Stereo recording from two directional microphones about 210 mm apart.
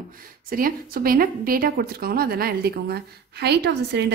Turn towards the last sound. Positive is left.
turn(degrees=-50)  # may be behind; listen again after turning